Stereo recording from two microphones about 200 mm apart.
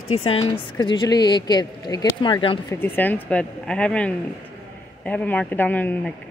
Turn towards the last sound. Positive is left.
turn(degrees=10)  # may be behind; listen again after turning